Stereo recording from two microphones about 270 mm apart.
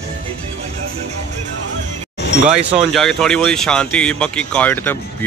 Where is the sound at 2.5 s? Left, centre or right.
Centre.